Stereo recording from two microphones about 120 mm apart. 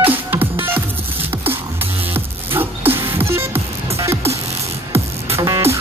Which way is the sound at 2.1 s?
15° right (ahead or behind).